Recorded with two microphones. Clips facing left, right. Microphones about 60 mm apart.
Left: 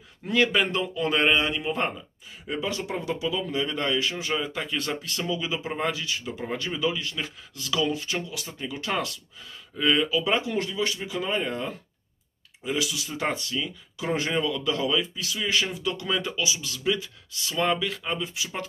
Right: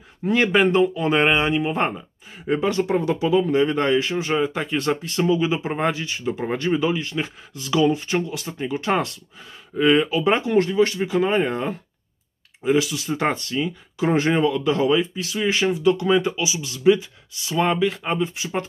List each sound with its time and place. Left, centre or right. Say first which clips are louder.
0.2 s speech: right 5 dB; right